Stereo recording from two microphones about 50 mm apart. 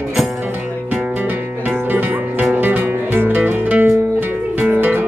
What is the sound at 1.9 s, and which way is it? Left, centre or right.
Music, right.